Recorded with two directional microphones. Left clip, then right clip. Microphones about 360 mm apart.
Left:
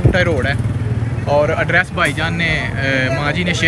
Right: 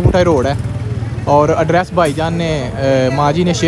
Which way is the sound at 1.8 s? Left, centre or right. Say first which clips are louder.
Right 2 dB; centre.